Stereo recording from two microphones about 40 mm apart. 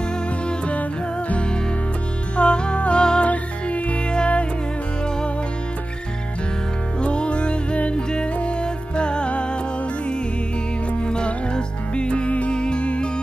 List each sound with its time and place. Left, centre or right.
2.3 s music: left
7.0 s music: left
10.9 s music: left